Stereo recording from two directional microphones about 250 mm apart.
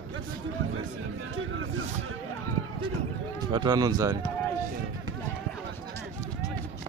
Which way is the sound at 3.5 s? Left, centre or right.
Centre.